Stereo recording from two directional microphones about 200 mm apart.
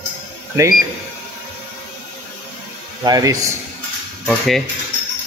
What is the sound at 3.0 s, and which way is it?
Speech, 20° right (ahead or behind).